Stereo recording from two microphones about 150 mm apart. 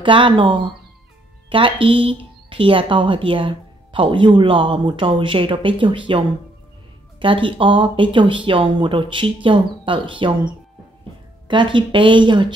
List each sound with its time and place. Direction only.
0.0 s speech: 35° right (ahead or behind)